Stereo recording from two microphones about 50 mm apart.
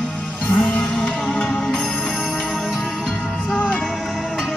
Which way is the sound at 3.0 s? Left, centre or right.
Centre.